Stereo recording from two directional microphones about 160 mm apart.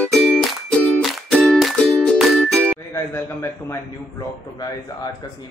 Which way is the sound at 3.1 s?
15° left (ahead or behind).